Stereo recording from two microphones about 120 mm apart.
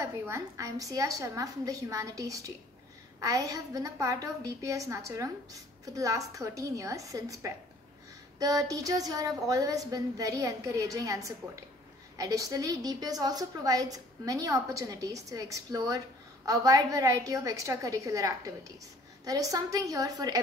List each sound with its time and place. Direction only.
0.0 s a woman's voice: 25° right (ahead or behind)